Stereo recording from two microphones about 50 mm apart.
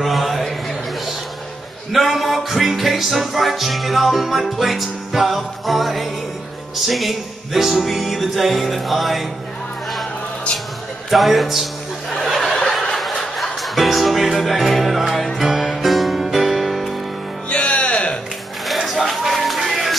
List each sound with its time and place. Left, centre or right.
0.0 s a sound: centre
1.9 s music: centre
11.1 s music: centre
12.9 s music: centre
17.5 s music: left
18.7 s a sound: centre